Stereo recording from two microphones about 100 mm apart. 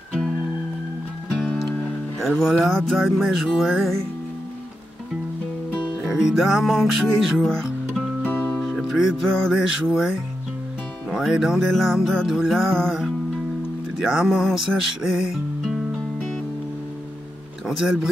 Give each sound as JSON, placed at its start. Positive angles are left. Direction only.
{"t": 1.3, "sound": "music", "side_deg": 5}
{"t": 5.8, "sound": "music", "side_deg": -5}
{"t": 8.3, "sound": "music", "side_deg": 15}
{"t": 8.6, "sound": "music", "side_deg": 0}
{"t": 17.6, "sound": "music", "side_deg": -5}